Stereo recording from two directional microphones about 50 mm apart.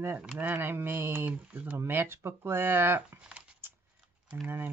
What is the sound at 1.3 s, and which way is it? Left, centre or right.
Speech, right.